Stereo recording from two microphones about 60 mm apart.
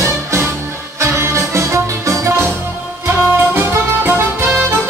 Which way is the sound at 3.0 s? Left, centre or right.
Right.